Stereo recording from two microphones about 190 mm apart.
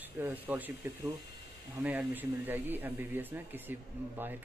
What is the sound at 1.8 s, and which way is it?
Speech, 10° right (ahead or behind).